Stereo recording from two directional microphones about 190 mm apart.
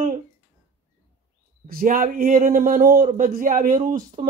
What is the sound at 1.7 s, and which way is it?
Speech, 50° right (ahead or behind).